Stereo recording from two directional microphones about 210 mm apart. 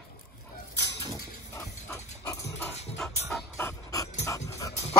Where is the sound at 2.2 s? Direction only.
15° left (ahead or behind).